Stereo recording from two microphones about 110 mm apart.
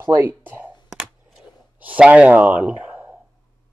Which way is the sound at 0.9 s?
10° right (ahead or behind).